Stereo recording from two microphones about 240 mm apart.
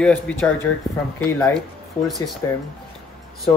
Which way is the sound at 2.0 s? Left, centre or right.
Centre.